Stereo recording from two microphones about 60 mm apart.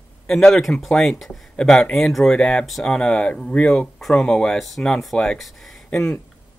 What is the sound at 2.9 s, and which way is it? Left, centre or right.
Speech, centre.